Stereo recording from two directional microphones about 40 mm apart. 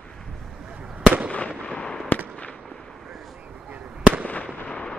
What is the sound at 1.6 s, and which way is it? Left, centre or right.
Fireworks, left.